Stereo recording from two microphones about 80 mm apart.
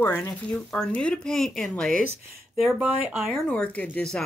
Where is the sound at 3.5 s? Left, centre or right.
Centre.